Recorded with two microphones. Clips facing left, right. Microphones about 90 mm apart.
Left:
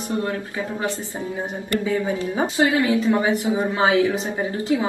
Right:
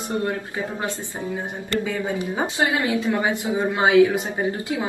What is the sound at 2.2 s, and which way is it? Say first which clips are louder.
Speech: left 1 dB; 20° right (ahead or behind).